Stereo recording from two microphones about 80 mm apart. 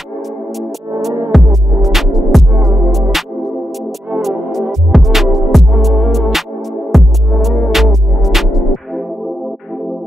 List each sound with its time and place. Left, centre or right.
1.3 s music: centre